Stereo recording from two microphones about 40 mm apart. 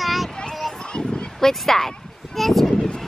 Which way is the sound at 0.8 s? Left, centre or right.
Left.